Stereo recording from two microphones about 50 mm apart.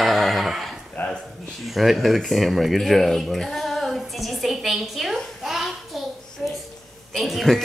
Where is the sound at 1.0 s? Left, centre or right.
Left.